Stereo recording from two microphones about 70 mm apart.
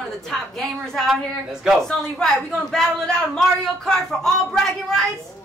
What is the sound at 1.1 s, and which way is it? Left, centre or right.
Speech, centre.